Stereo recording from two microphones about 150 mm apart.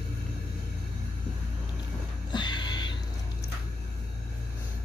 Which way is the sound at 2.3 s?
30° left (ahead or behind).